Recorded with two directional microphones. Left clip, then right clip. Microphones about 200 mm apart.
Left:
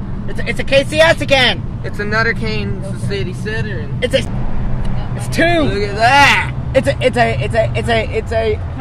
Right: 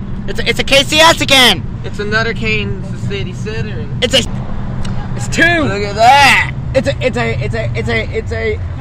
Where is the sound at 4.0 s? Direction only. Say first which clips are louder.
Right 4 dB; 55° right (ahead or behind).